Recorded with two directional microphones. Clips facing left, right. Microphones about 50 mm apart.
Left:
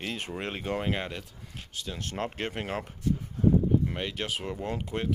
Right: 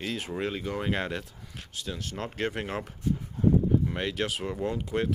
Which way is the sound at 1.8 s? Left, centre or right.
Centre.